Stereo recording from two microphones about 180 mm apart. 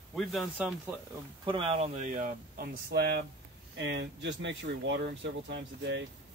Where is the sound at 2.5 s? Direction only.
60° right (ahead or behind).